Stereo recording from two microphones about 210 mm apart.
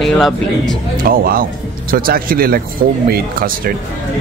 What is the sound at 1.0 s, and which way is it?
Speech, 45° right (ahead or behind).